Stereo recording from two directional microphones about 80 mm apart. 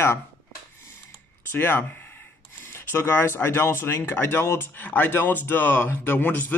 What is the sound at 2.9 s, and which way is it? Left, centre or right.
Speech, left.